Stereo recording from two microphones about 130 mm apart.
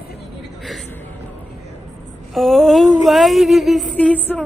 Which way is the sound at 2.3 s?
Centre (ahead or behind).